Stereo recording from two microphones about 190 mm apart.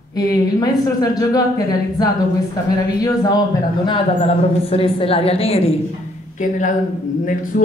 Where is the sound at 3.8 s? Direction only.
30° left (ahead or behind).